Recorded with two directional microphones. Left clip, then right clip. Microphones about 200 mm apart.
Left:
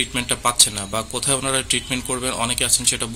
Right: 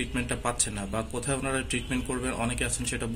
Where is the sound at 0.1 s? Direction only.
45° left (ahead or behind).